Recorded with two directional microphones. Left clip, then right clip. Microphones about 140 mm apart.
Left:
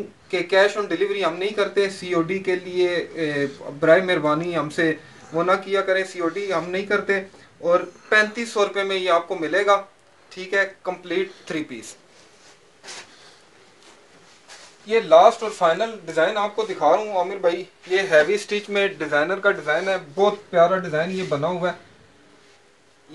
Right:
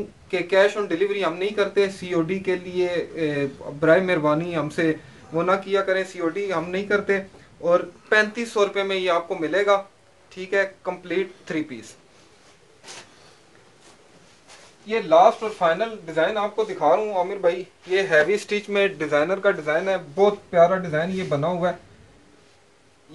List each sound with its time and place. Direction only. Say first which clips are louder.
0.3 s speech: left 1 dB; centre (ahead or behind); by 11.9 s 20° left (ahead or behind)
14.9 s speech: left 2 dB; 90° left
15.8 s speech: left 2 dB; 50° left (ahead or behind)
16.7 s speech: left 1 dB; 25° left (ahead or behind)
17.1 s speech: left 1 dB; 10° left (ahead or behind)
18.3 s speech: even; 15° right (ahead or behind)
19.6 s speech: left 1 dB; centre (ahead or behind); by 21.7 s 20° left (ahead or behind)